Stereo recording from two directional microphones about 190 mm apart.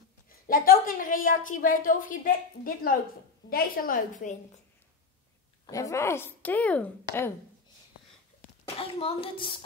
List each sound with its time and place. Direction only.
0.3 s a woman's voice: 50° left (ahead or behind)
5.7 s speech: 15° left (ahead or behind)
8.7 s a child's voice: 30° left (ahead or behind)